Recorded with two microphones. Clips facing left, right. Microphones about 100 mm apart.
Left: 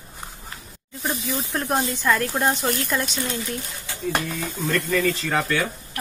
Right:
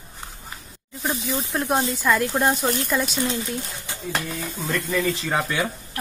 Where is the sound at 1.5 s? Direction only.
5° right (ahead or behind); by 4.0 s 20° right (ahead or behind).